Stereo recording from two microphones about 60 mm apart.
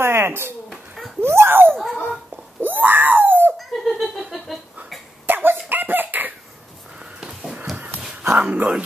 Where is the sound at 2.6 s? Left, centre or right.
Right.